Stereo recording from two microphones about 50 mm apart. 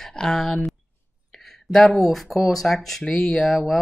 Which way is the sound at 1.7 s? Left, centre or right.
Centre.